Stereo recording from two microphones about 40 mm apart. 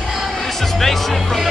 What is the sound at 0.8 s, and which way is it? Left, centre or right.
Speech, centre.